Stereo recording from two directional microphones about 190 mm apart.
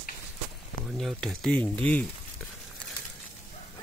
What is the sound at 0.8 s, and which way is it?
Speech, centre (ahead or behind).